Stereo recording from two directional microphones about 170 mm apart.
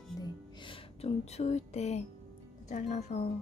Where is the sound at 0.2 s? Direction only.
30° left (ahead or behind).